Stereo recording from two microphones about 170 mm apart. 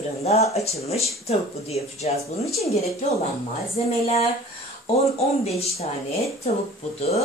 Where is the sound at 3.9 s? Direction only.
35° left (ahead or behind).